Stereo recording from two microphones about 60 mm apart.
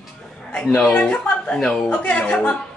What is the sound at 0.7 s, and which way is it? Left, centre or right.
Speech, centre.